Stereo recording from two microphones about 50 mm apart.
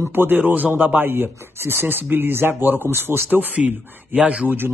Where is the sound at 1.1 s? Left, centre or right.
Right.